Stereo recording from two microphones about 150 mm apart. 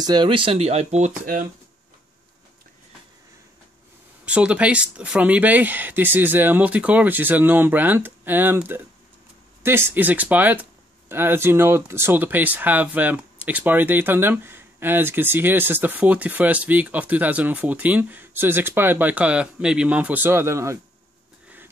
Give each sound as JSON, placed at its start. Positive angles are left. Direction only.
{"t": 0.0, "sound": "speech", "side_deg": -30}
{"t": 4.3, "sound": "speech", "side_deg": -10}